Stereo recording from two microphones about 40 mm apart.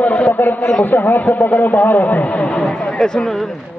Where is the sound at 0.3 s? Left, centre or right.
Left.